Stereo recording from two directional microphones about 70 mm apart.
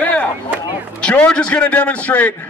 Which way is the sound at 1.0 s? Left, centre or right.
Centre.